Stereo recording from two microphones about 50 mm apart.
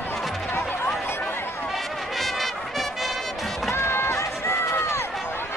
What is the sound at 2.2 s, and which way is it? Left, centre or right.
Brass instrument, centre.